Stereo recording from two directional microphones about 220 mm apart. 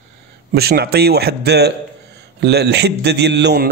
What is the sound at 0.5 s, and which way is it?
A man's voice, 45° right (ahead or behind).